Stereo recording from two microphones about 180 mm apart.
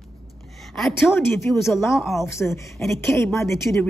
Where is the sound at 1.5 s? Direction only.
Centre (ahead or behind).